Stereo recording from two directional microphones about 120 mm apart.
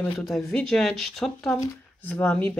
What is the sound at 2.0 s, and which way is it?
Speech, 15° left (ahead or behind).